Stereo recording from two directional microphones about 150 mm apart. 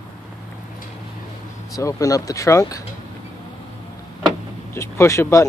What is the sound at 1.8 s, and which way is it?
Speech, 20° left (ahead or behind).